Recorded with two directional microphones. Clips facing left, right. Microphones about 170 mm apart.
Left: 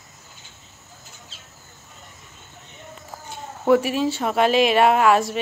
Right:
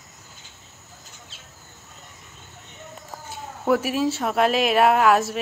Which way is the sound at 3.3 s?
Centre (ahead or behind).